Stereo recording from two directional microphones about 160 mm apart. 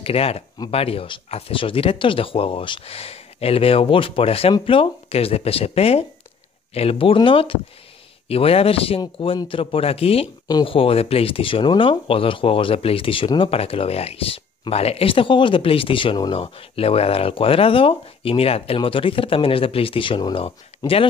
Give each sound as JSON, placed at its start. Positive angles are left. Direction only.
{"t": 0.0, "sound": "speech", "side_deg": 40}